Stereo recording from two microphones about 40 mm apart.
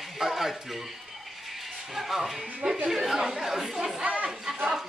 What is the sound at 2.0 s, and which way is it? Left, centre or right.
A man's voice, centre.